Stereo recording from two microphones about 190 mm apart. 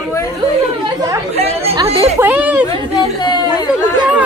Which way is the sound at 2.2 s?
10° right (ahead or behind).